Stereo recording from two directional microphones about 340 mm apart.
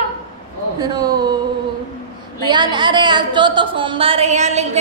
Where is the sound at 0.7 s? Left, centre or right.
Centre.